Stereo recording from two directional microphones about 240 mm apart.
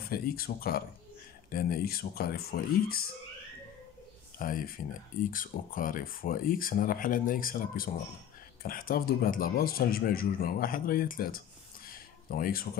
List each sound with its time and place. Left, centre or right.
0.1 s speech: left
4.4 s speech: left